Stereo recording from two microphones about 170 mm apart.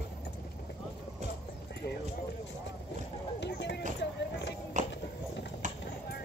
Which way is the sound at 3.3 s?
90° left.